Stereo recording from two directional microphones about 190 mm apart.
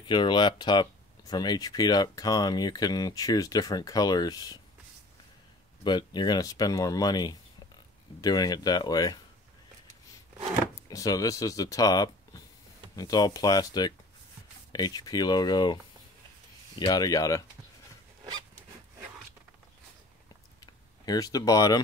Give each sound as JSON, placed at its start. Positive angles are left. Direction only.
{"t": 0.0, "sound": "speech", "side_deg": 25}
{"t": 5.9, "sound": "speech", "side_deg": 25}
{"t": 10.9, "sound": "speech", "side_deg": 20}
{"t": 20.6, "sound": "speech", "side_deg": 20}